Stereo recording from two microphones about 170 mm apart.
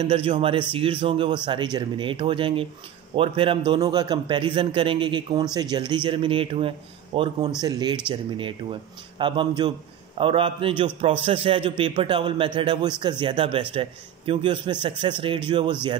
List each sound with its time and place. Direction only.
0.0 s a man's voice: 35° right (ahead or behind)